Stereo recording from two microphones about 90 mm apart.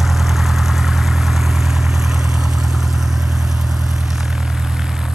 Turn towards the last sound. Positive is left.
turn(degrees=-5)  # may be behind; listen again after turning